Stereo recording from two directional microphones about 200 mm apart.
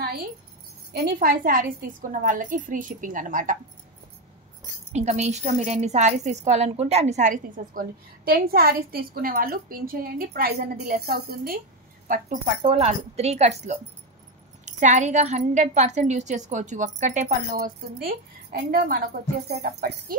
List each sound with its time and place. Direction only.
0.9 s a woman's voice: 45° right (ahead or behind)
4.9 s a woman's voice: 35° right (ahead or behind); by 11.6 s 50° right (ahead or behind)
12.6 s a woman's voice: 30° right (ahead or behind); by 20.2 s 50° right (ahead or behind)